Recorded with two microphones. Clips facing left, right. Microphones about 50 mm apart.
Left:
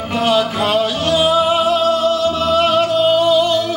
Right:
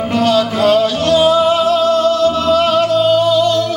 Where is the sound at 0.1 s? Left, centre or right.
Centre.